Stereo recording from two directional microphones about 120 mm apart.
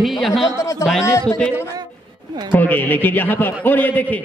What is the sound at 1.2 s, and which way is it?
Speech, 10° left (ahead or behind).